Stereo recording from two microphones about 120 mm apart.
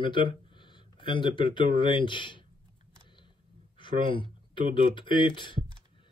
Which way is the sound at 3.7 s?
45° left (ahead or behind).